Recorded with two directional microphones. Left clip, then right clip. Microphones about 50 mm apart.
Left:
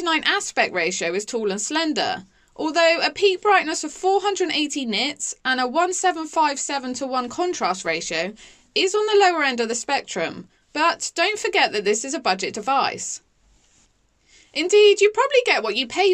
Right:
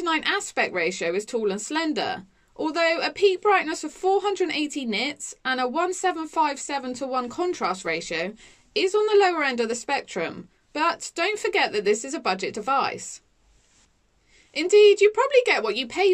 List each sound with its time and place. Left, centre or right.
0.0 s a woman's voice: left
14.5 s a woman's voice: left